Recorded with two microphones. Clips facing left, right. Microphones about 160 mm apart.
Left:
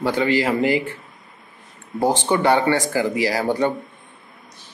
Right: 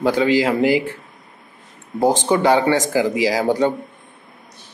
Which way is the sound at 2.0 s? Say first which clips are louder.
Right 3 dB; 15° right (ahead or behind).